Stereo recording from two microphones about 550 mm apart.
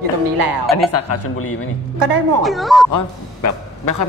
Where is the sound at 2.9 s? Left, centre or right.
Left.